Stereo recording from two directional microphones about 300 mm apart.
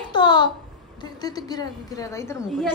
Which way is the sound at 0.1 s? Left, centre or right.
Centre.